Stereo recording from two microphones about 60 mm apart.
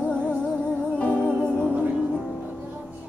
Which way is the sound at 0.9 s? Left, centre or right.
Left.